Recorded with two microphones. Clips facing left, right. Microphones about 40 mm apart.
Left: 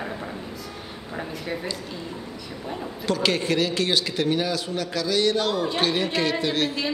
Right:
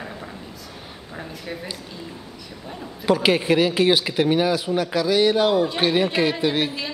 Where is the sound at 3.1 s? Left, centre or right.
Centre.